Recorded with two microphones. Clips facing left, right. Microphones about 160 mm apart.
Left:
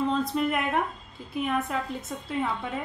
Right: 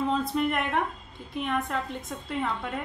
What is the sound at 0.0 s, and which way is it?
A woman's voice, centre (ahead or behind).